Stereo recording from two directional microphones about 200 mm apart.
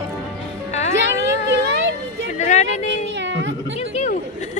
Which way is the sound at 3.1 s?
65° right (ahead or behind).